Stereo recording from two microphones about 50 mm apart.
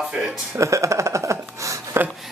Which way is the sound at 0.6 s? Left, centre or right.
Right.